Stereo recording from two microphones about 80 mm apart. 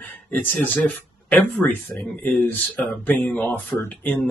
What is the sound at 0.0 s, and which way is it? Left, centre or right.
Speech, centre.